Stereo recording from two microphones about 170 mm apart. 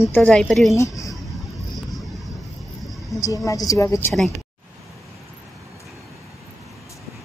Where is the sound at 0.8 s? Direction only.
20° left (ahead or behind).